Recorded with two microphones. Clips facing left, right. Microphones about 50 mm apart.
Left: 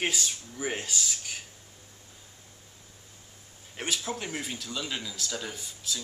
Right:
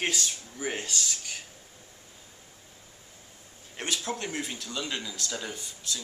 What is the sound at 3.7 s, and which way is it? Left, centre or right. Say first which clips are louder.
Speech: even; centre.